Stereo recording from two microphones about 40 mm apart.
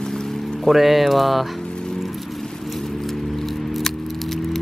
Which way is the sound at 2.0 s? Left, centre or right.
Centre.